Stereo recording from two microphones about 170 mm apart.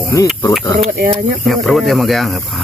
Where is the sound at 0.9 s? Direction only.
60° right (ahead or behind).